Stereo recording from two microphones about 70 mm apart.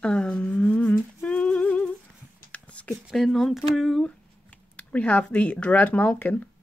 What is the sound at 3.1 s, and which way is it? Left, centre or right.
Speech, centre.